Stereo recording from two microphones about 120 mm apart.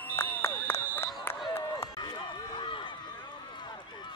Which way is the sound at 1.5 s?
20° left (ahead or behind).